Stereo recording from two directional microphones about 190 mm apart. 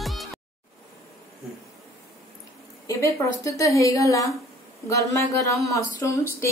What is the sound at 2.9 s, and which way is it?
A woman's voice, 15° left (ahead or behind).